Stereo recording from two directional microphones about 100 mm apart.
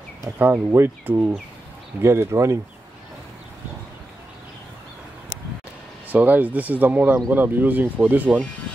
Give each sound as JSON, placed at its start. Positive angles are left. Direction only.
{"t": 0.4, "sound": "speech", "side_deg": -20}
{"t": 6.0, "sound": "speech", "side_deg": -15}